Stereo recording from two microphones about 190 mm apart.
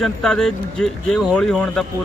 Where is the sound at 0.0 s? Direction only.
5° left (ahead or behind).